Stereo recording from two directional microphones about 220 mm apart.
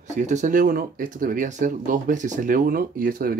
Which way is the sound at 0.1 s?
35° right (ahead or behind).